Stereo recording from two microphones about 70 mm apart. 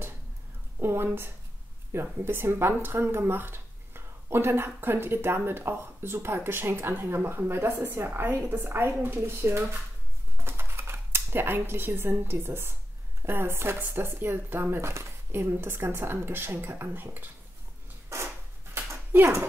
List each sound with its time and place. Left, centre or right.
0.7 s a woman's voice: right
10.3 s dishes: right
13.2 s speech: right
18.8 s a sound: right